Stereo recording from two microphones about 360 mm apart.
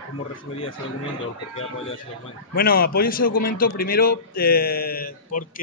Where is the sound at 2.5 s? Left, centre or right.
Left.